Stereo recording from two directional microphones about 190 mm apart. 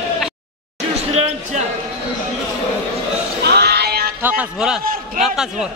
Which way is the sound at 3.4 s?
60° right (ahead or behind).